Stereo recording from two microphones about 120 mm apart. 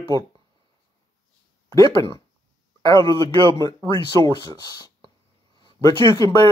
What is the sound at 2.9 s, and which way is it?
Speech, 25° left (ahead or behind).